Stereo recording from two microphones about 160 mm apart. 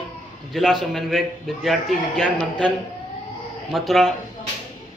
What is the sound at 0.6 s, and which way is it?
A man's voice, centre (ahead or behind).